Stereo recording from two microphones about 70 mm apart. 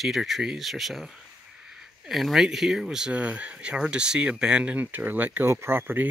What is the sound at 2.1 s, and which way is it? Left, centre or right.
Speech, centre.